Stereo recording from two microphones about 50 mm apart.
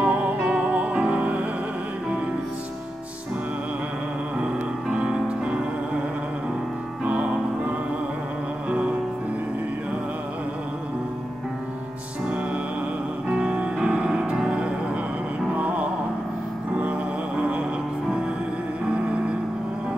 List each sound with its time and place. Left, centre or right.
0.0 s music: right
4.9 s music: right
7.1 s music: right
13.3 s music: right
15.5 s music: right
17.4 s music: right